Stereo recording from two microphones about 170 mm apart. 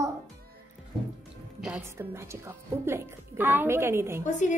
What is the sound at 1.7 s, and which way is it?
A woman's voice, 15° right (ahead or behind).